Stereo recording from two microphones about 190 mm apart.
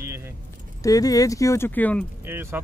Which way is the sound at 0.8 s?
20° left (ahead or behind).